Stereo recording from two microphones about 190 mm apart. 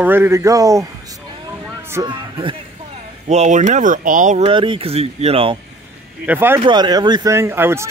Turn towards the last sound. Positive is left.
turn(degrees=-10)  # may be behind; listen again after turning